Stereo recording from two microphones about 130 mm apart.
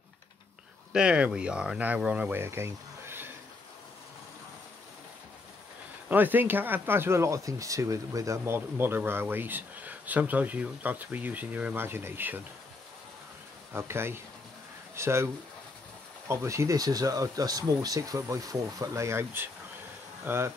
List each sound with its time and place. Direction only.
0.9 s speech: 10° right (ahead or behind)
6.0 s speech: 15° right (ahead or behind)
13.7 s speech: 20° right (ahead or behind)
16.3 s speech: 20° right (ahead or behind)